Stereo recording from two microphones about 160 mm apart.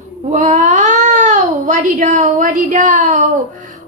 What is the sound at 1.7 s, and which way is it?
Speech, 50° right (ahead or behind).